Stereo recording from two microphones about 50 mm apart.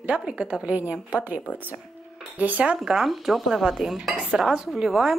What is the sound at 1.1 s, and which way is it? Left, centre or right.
Speech, right.